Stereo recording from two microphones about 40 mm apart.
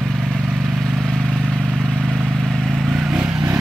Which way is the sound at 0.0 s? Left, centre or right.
Centre.